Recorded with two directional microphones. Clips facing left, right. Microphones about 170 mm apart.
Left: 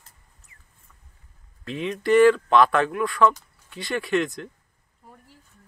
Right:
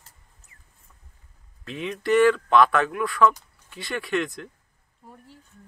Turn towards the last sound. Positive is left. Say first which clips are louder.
# left 3 dB
turn(degrees=0)  # may be behind; listen again after turning